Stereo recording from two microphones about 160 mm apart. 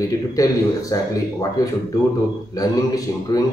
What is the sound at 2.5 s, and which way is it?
Speech, 20° left (ahead or behind).